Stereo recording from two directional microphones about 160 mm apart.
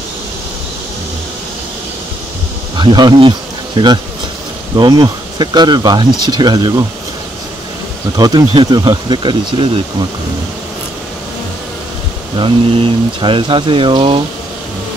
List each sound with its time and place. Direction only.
2.8 s speech: 30° right (ahead or behind)
8.2 s speech: 25° right (ahead or behind)
12.4 s speech: 35° right (ahead or behind)